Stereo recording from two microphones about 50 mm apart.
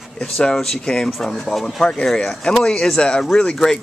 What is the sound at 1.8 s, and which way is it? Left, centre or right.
Speech, centre.